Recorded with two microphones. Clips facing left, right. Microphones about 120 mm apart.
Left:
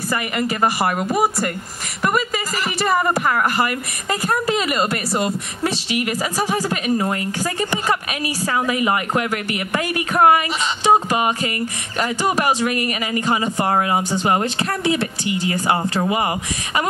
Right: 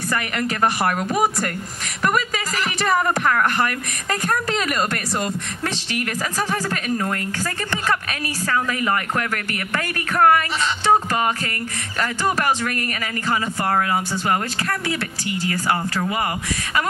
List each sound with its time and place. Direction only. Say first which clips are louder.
0.1 s speech: left 2 dB; 5° left (ahead or behind)